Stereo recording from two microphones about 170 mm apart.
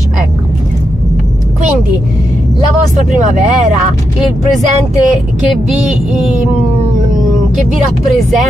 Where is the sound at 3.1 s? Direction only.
45° right (ahead or behind).